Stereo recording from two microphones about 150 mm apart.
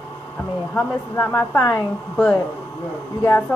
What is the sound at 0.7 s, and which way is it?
Speech, 10° left (ahead or behind).